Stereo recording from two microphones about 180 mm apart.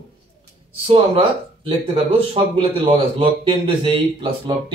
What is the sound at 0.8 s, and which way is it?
Speech, 30° right (ahead or behind).